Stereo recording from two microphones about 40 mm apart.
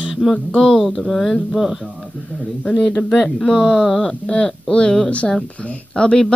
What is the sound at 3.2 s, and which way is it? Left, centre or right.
Speech, centre.